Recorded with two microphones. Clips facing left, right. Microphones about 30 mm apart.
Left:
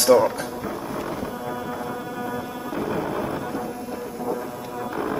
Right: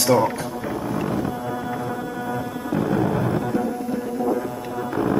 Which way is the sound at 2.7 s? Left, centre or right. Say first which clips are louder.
Right 5 dB; centre.